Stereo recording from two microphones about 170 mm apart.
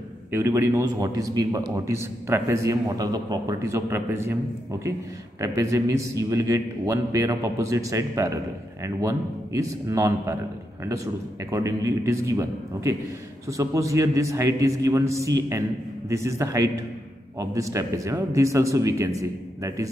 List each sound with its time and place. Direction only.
0.3 s a man's voice: 15° right (ahead or behind)
5.4 s a man's voice: 20° right (ahead or behind)
11.5 s a man's voice: 15° right (ahead or behind)